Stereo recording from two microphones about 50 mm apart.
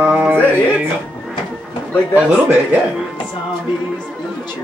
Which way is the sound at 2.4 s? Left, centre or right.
Right.